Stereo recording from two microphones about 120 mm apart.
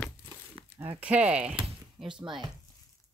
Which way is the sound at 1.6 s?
45° right (ahead or behind).